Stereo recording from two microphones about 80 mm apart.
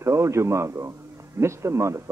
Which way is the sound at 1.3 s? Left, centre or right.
Right.